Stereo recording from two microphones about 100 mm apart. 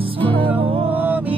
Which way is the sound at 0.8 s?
15° right (ahead or behind).